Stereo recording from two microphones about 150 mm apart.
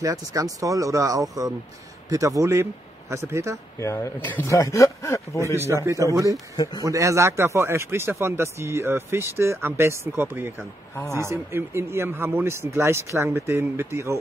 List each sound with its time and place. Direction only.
0.0 s speech: 20° right (ahead or behind)
3.8 s speech: 20° left (ahead or behind)
5.7 s speech: 20° right (ahead or behind)
6.5 s speech: 25° left (ahead or behind)
6.8 s speech: 20° right (ahead or behind)